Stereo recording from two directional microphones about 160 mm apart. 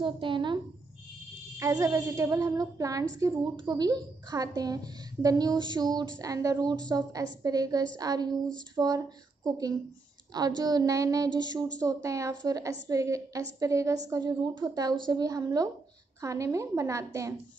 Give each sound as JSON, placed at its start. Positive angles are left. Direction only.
{"t": 0.0, "sound": "speech", "side_deg": -30}
{"t": 1.6, "sound": "speech", "side_deg": -20}